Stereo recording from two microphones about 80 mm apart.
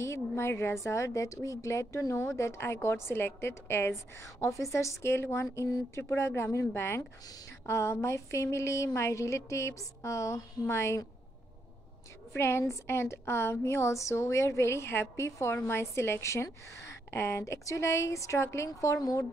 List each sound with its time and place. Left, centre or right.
0.0 s a woman's voice: left
4.2 s a woman's voice: left
12.3 s a woman's voice: left